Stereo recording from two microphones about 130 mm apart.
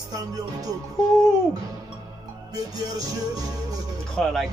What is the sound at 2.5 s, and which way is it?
Music, 30° right (ahead or behind).